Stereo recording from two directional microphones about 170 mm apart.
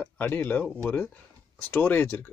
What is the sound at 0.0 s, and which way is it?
Speech, 10° left (ahead or behind).